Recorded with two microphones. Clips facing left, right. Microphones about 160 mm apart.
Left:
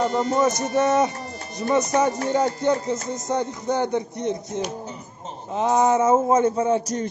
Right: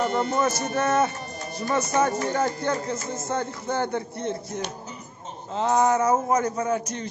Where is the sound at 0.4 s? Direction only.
20° left (ahead or behind); by 7.1 s 35° left (ahead or behind).